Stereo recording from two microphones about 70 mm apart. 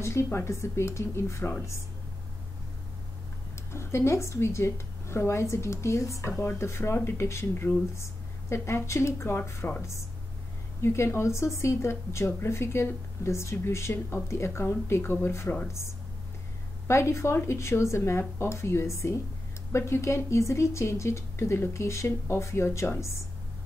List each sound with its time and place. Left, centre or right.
0.0 s a woman's voice: left
3.7 s a woman's voice: left
6.4 s a woman's voice: left
16.8 s a woman's voice: left